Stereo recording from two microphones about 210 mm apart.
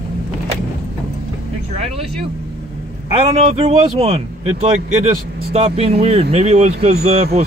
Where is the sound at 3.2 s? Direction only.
30° right (ahead or behind).